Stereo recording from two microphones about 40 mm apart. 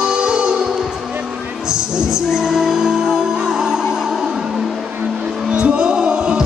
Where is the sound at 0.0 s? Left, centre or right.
Centre.